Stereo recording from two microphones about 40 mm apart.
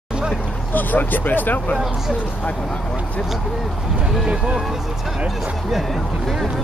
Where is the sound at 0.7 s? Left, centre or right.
Left.